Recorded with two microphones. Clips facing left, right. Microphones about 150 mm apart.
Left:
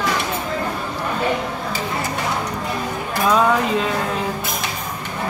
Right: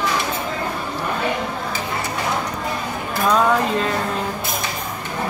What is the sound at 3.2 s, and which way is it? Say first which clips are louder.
Music: even; 5° left (ahead or behind).